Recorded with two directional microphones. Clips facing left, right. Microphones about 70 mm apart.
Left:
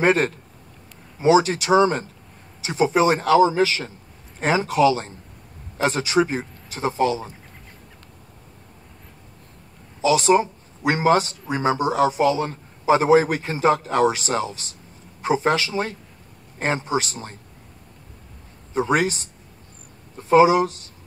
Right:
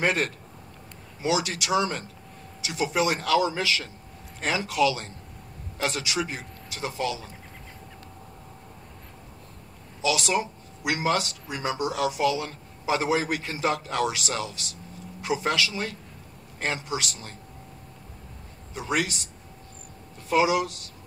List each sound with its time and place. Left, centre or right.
0.0 s speech: left
10.0 s speech: left
18.8 s speech: left